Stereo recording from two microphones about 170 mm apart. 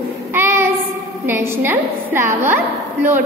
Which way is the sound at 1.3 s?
15° right (ahead or behind).